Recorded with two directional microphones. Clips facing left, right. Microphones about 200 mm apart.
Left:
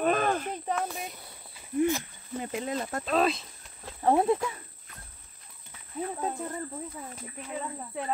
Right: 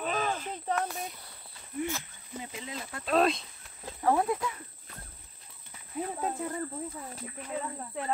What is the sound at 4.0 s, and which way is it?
Speech, 25° left (ahead or behind).